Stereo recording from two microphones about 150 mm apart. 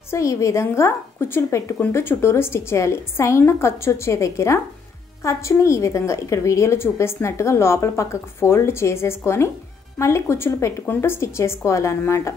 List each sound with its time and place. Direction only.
0.1 s a woman's voice: 20° left (ahead or behind)